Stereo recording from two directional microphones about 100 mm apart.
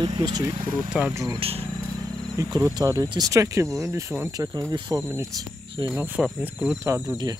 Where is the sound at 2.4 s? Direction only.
35° right (ahead or behind).